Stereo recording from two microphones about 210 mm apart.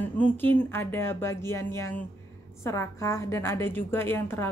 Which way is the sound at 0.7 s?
10° left (ahead or behind).